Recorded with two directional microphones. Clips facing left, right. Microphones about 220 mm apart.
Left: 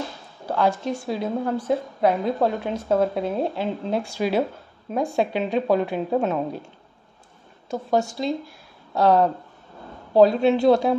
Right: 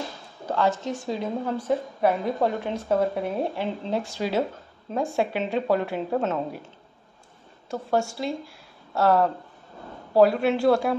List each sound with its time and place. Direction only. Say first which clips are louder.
0.5 s speech: left 2 dB; 10° left (ahead or behind)
7.7 s speech: left 2 dB; 15° left (ahead or behind)